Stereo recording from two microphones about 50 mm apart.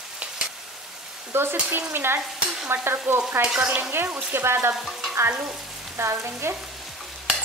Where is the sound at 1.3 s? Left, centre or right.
Right.